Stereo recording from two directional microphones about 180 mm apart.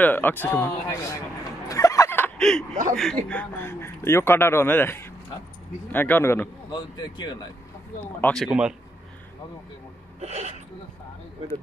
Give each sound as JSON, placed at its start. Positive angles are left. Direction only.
{"t": 0.0, "sound": "speech", "side_deg": 10}
{"t": 1.7, "sound": "a sound", "side_deg": 15}
{"t": 2.7, "sound": "speech", "side_deg": -45}
{"t": 3.3, "sound": "speech", "side_deg": 10}
{"t": 6.7, "sound": "speech", "side_deg": 25}
{"t": 8.2, "sound": "speech", "side_deg": 5}
{"t": 10.2, "sound": "speech", "side_deg": -35}